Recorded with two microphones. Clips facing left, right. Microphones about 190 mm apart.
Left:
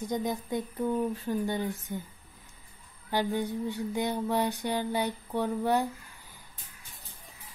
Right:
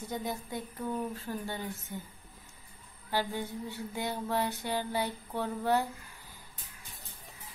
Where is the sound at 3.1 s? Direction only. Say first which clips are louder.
Left 4 dB; 20° left (ahead or behind).